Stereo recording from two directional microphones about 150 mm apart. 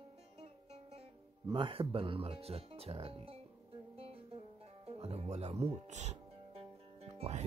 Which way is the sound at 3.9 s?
40° right (ahead or behind).